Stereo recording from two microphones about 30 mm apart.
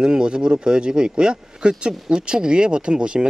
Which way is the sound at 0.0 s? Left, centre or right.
Right.